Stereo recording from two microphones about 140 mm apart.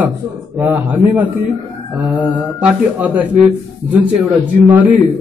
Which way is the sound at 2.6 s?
10° right (ahead or behind).